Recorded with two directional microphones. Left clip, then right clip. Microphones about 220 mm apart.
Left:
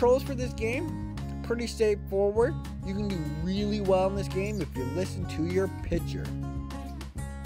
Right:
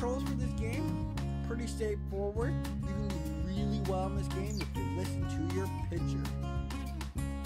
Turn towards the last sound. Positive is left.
turn(degrees=35)  # may be behind; listen again after turning